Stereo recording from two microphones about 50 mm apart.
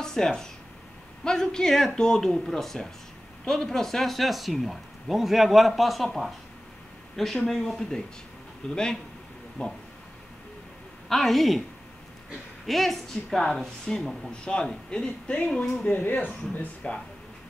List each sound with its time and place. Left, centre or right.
0.0 s a woman's voice: centre
7.2 s a woman's voice: centre; by 9.7 s left
11.1 s speech: centre
12.6 s a woman's voice: centre; by 15.5 s left
15.5 s a woman's voice: centre
15.9 s speech: left
16.8 s speech: left